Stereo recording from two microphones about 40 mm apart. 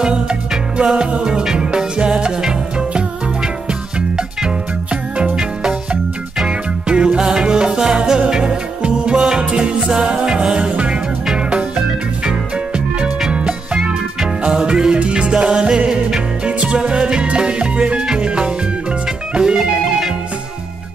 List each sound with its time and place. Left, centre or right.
0.0 s music: right
6.4 s music: right
12.3 s music: right